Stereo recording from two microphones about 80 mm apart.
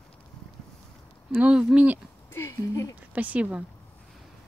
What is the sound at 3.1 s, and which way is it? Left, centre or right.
Speech, centre.